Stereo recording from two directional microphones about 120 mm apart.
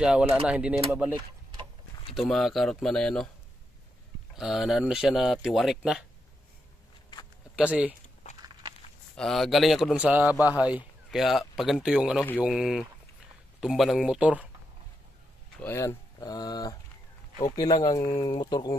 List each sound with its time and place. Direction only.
0.0 s speech: 5° right (ahead or behind)
2.1 s speech: centre (ahead or behind)
4.4 s speech: 5° right (ahead or behind)
7.5 s speech: 10° right (ahead or behind)
8.4 s walk: 35° right (ahead or behind)
9.1 s speech: centre (ahead or behind)
15.6 s speech: 20° left (ahead or behind)